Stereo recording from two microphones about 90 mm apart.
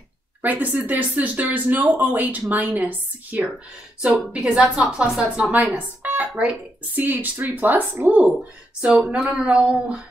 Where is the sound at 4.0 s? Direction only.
10° right (ahead or behind).